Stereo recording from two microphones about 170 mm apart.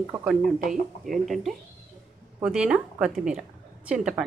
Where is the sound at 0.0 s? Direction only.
20° right (ahead or behind).